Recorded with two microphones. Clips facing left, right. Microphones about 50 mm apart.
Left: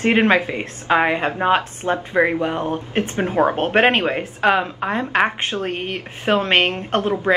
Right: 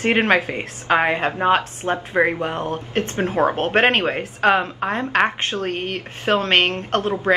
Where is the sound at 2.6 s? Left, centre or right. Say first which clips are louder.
Left 1 dB; centre.